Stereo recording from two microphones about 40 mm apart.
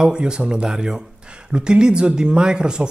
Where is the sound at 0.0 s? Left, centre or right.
Right.